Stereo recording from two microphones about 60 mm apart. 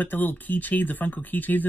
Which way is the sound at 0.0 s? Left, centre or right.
Left.